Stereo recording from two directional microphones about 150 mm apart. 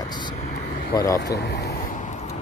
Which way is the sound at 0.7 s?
90° left.